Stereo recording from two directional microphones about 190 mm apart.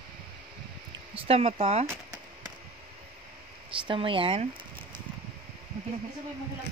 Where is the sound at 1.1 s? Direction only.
30° right (ahead or behind).